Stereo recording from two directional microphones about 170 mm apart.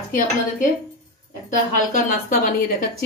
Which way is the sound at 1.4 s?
50° left (ahead or behind).